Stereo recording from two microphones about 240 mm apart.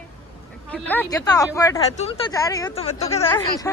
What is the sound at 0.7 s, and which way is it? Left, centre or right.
A woman's voice, centre.